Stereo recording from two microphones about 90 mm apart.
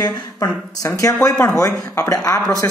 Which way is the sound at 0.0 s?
45° left (ahead or behind).